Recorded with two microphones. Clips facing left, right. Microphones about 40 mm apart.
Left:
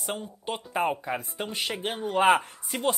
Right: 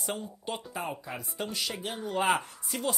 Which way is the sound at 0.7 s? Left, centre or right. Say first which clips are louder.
Left 9 dB; left.